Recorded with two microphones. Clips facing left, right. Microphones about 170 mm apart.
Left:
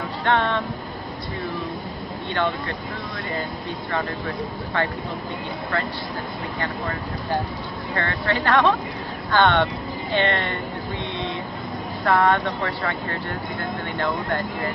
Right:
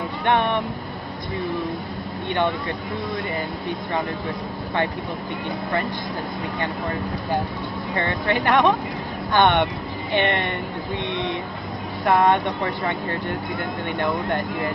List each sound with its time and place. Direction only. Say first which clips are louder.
0.2 s speech: right 1 dB; 15° right (ahead or behind)
7.9 s speech: right 2 dB; 15° right (ahead or behind)
12.0 s speech: right 1 dB; 20° right (ahead or behind)
13.9 s speech: right 2 dB; 20° right (ahead or behind)